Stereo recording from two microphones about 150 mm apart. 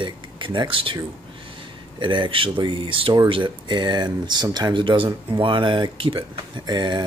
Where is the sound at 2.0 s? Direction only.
30° right (ahead or behind).